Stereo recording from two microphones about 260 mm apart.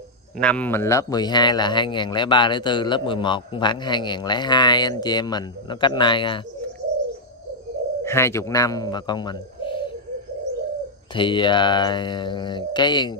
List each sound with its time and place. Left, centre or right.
0.4 s speech: centre
8.0 s speech: centre
11.1 s speech: centre